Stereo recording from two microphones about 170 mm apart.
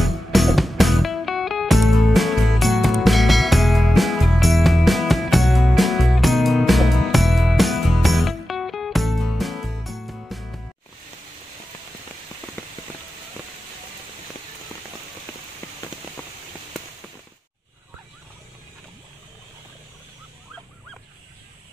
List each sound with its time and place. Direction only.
0.0 s music: centre (ahead or behind)
15.3 s rain on surface: 15° left (ahead or behind)